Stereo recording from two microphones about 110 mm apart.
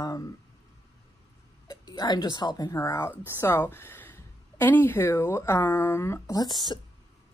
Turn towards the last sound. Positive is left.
turn(degrees=40)  # may be behind; listen again after turning